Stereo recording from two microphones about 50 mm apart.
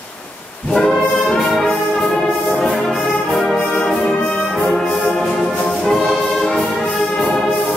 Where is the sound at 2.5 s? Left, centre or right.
Centre.